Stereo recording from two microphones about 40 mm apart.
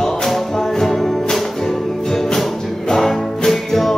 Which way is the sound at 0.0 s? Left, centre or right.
Centre.